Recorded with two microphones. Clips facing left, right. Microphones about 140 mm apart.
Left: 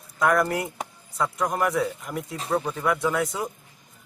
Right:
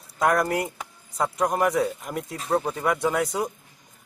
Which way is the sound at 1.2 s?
25° right (ahead or behind).